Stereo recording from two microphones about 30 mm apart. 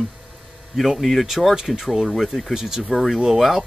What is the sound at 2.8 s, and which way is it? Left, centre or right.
Speech, centre.